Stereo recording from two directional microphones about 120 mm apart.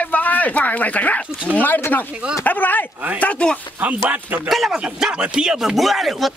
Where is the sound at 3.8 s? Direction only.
15° right (ahead or behind).